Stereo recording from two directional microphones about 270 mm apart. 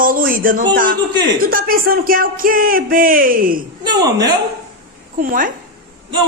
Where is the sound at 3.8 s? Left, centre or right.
Centre.